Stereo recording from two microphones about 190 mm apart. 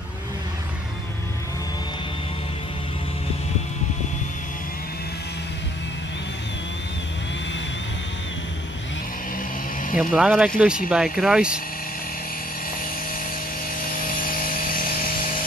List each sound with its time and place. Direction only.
9.9 s speech: 5° right (ahead or behind)
13.9 s sawing: 45° left (ahead or behind)